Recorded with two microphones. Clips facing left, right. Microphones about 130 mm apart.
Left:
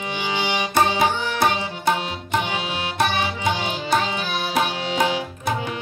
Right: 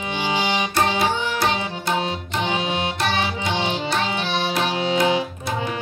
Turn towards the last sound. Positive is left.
turn(degrees=-25)  # may be behind; listen again after turning